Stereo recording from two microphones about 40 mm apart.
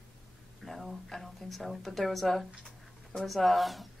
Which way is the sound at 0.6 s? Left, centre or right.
Centre.